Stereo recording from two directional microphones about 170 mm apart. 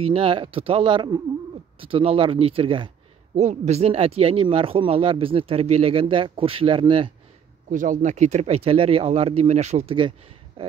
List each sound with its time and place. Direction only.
0.0 s speech: 35° right (ahead or behind)
7.7 s speech: 50° right (ahead or behind); by 10.7 s 35° right (ahead or behind)